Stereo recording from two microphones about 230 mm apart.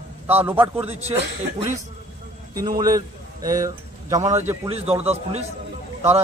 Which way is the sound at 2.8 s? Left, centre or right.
Centre.